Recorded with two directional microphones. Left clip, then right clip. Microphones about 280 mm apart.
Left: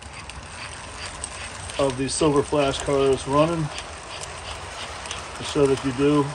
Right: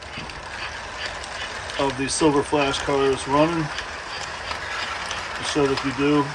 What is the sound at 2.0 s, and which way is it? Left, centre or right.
Speech, centre.